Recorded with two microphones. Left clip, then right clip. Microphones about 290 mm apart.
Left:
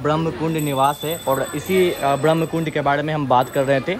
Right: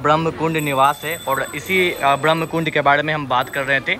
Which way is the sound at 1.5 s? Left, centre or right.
Centre.